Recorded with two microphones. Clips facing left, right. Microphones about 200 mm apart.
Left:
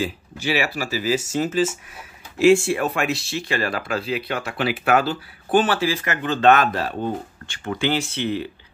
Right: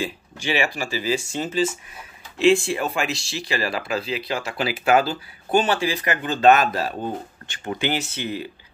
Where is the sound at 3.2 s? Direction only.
50° left (ahead or behind).